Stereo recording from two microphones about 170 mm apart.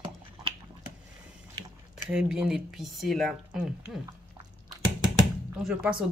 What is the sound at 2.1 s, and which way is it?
Speech, 5° right (ahead or behind).